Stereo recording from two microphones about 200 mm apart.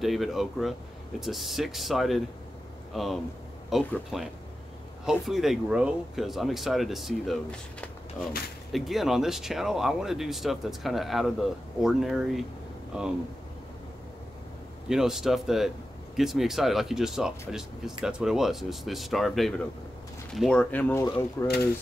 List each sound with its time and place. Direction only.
0.0 s speech: centre (ahead or behind)
14.9 s speech: centre (ahead or behind); by 21.5 s 15° left (ahead or behind)